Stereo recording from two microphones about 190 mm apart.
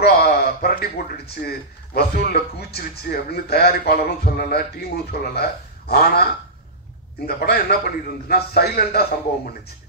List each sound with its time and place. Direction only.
0.0 s a man's voice: 55° left (ahead or behind)
7.2 s speech: 55° left (ahead or behind)